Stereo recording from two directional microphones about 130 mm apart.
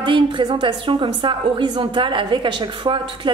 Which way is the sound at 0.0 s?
40° right (ahead or behind).